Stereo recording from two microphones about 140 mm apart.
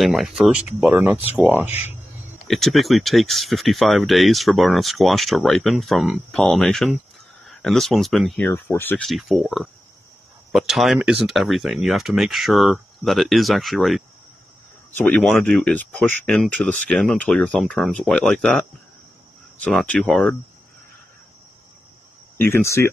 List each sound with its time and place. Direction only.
0.0 s speech: centre (ahead or behind)
2.4 s speech: centre (ahead or behind)
8.5 s speech: 15° left (ahead or behind)
9.0 s speech: centre (ahead or behind)
19.6 s speech: 5° left (ahead or behind)
22.4 s speech: 15° left (ahead or behind)